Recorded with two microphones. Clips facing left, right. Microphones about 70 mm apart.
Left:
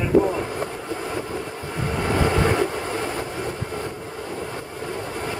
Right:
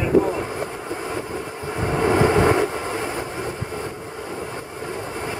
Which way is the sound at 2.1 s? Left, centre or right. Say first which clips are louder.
Right 3 dB; right.